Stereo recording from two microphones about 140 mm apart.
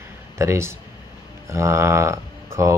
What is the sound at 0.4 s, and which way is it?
Speech, 20° right (ahead or behind).